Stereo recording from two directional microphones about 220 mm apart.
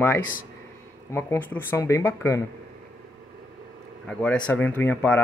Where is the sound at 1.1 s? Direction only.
10° left (ahead or behind).